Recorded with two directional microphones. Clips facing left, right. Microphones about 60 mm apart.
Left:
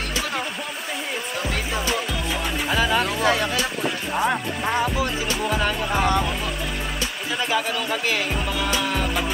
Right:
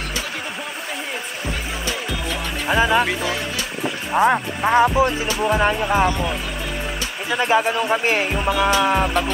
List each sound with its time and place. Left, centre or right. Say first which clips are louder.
2.7 s music: right 5 dB; right
4.1 s music: right 8 dB; right
7.3 s music: right 6 dB; right